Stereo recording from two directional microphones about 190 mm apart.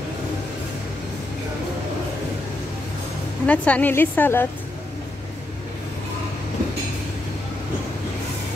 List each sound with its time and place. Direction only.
3.4 s a woman's voice: 5° left (ahead or behind)